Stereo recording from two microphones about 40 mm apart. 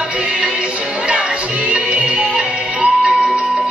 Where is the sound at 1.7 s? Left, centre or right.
Right.